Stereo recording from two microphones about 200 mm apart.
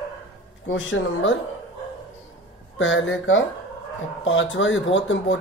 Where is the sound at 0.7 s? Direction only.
80° left.